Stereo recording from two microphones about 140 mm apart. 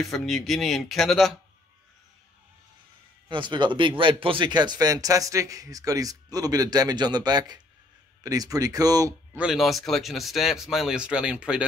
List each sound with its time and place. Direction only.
0.0 s speech: centre (ahead or behind)
3.3 s speech: 35° right (ahead or behind)
9.3 s speech: 5° right (ahead or behind)